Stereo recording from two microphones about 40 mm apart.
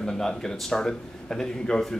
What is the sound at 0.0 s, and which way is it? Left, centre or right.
Speech, centre.